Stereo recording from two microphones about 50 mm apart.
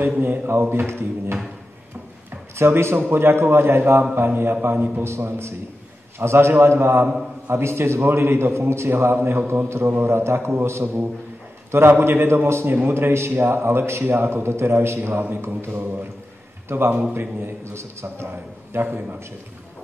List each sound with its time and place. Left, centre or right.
0.5 s a man's voice: right
2.5 s a man's voice: right
4.1 s a man's voice: right
5.0 s a man's voice: right
9.1 s a man's voice: right
14.0 s a man's voice: right
15.4 s a man's voice: right